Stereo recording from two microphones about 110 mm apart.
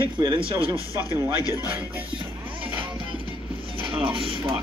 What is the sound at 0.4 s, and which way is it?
Speech, 55° right (ahead or behind).